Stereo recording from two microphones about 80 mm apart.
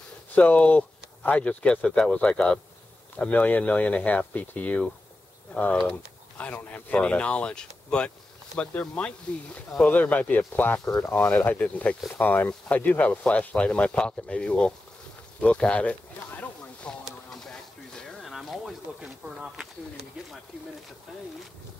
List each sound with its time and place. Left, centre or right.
0.3 s speech: centre
10.9 s speech: left
11.2 s speech: left
15.4 s a sound: centre
17.0 s a sound: centre
18.9 s speech: centre